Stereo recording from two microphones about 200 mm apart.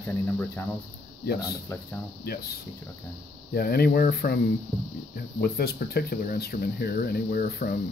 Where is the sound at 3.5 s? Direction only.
50° left (ahead or behind).